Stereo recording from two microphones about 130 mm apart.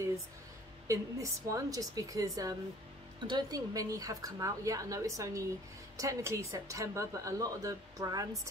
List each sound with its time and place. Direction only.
0.8 s speech: 25° right (ahead or behind)